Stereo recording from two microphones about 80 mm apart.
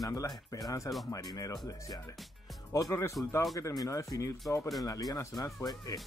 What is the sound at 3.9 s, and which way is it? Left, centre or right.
Speech, left.